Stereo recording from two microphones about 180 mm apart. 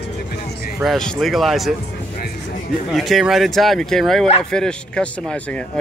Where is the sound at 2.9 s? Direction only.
Centre (ahead or behind).